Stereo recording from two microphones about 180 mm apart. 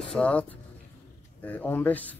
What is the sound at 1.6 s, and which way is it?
Speech, 10° left (ahead or behind).